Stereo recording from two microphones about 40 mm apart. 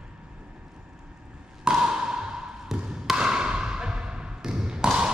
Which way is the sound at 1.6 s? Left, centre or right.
Centre.